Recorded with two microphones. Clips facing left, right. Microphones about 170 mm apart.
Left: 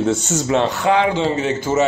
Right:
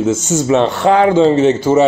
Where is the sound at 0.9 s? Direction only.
40° right (ahead or behind).